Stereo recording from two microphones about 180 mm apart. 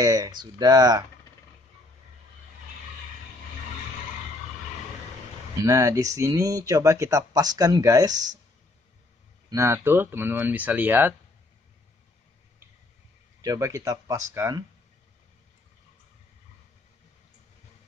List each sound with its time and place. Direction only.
0.0 s speech: 20° right (ahead or behind)
5.6 s speech: 20° right (ahead or behind)
9.5 s speech: 15° right (ahead or behind)
13.4 s speech: 20° right (ahead or behind)